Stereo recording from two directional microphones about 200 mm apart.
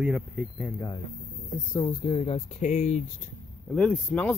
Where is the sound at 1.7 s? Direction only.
25° left (ahead or behind).